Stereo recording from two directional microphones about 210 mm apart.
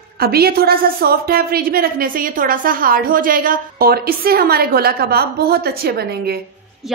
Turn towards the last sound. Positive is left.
turn(degrees=-50)  # may be behind; listen again after turning